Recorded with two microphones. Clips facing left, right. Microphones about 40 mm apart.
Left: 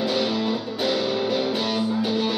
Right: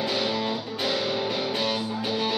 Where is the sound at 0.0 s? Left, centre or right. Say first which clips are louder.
Left 3 dB; centre.